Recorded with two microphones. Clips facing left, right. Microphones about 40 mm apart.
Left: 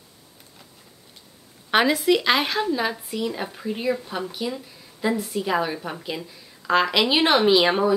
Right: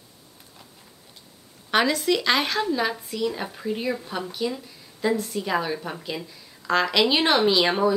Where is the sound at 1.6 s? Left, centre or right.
Centre.